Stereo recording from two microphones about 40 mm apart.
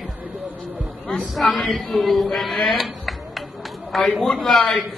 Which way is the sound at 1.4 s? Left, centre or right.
Centre.